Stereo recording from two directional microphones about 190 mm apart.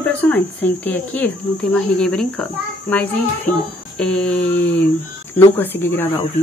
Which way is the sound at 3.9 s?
5° left (ahead or behind).